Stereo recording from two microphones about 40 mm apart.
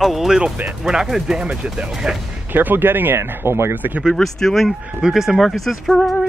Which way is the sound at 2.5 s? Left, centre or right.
Right.